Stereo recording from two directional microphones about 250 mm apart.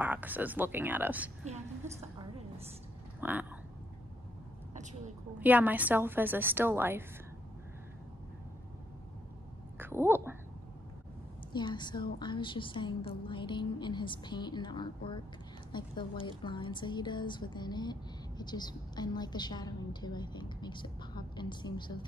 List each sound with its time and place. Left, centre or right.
0.0 s a woman's voice: centre
3.2 s speech: centre
5.4 s a woman's voice: centre
9.8 s speech: centre
11.5 s a woman's voice: centre